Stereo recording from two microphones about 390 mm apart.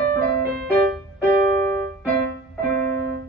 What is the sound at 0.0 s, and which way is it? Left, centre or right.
Music, right.